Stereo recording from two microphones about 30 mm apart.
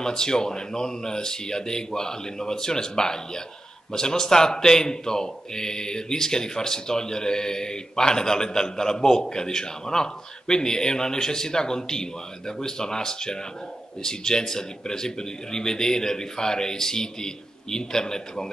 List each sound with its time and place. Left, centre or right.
0.0 s a man's voice: left